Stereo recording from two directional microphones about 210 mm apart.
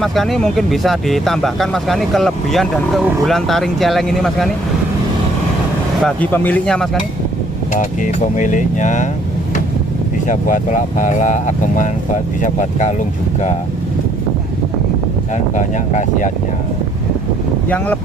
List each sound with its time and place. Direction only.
0.0 s speech: centre (ahead or behind)
6.0 s speech: 10° left (ahead or behind)
7.7 s speech: 35° left (ahead or behind)
10.2 s speech: 40° left (ahead or behind)
15.5 s speech: 35° left (ahead or behind)